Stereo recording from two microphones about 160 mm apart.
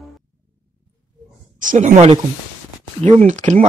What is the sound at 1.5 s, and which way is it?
Speech, 50° right (ahead or behind).